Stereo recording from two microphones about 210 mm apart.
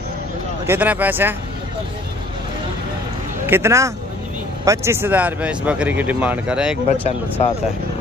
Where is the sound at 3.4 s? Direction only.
10° right (ahead or behind).